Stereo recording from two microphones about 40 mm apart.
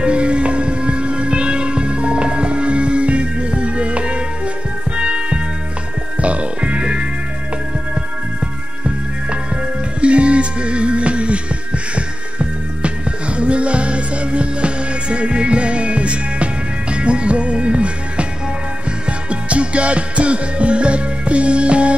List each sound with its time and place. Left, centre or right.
0.0 s music: right
9.9 s music: right